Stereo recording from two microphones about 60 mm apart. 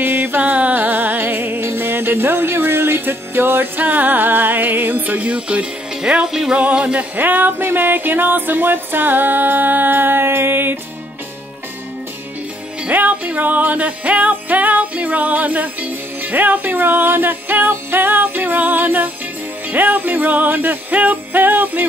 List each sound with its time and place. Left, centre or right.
0.0 s music: right; by 7.1 s centre
7.2 s music: right
12.8 s music: right